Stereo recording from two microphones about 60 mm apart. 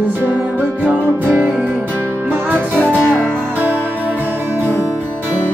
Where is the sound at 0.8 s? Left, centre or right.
Right.